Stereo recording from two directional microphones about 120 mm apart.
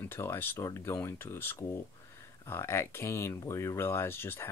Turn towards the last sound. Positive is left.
turn(degrees=20)  # may be behind; listen again after turning